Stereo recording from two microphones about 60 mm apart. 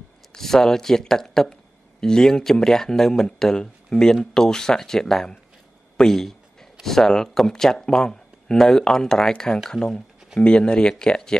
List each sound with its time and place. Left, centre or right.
0.3 s a man's voice: centre